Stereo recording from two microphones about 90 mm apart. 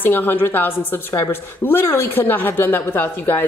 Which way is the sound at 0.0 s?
20° left (ahead or behind).